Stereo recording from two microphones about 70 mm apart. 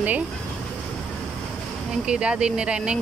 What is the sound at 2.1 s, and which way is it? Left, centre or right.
Speech, centre.